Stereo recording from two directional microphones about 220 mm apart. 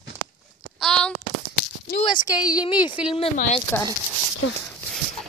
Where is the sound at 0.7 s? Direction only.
5° left (ahead or behind).